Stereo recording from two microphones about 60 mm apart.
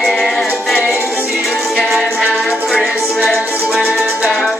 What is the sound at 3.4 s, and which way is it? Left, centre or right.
Music, right.